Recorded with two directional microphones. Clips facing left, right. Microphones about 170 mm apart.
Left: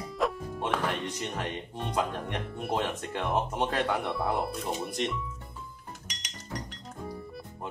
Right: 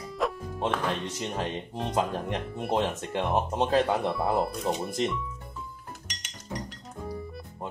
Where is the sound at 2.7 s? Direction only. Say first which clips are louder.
Right 4 dB; 25° right (ahead or behind).